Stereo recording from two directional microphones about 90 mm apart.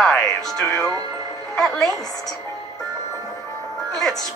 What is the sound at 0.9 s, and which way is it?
Music, 45° right (ahead or behind).